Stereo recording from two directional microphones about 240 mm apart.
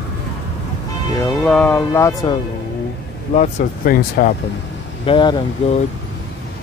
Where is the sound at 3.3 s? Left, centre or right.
Left.